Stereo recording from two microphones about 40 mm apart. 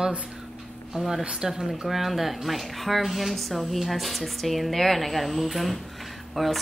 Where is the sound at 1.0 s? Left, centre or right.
Centre.